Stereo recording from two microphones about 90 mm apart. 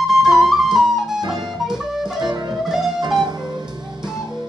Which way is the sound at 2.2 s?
55° right (ahead or behind).